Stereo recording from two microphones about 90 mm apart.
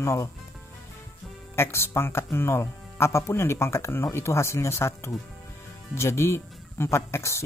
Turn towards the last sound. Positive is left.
turn(degrees=30)  # may be behind; listen again after turning